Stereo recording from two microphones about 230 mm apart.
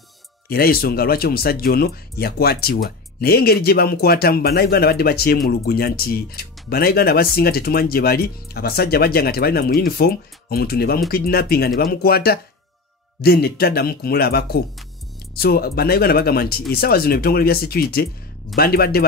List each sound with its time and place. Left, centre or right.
0.5 s speech: left